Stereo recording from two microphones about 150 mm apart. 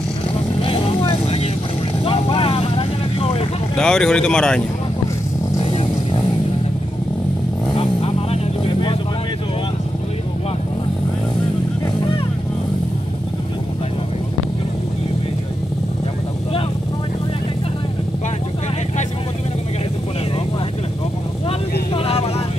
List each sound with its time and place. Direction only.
0.6 s vehicle: 40° left (ahead or behind)
3.7 s speech: 5° left (ahead or behind)
7.7 s vehicle: 40° left (ahead or behind)
21.9 s vehicle: 40° left (ahead or behind)